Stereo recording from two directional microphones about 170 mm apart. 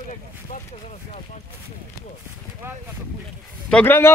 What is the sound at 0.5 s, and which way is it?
Speech, 50° left (ahead or behind).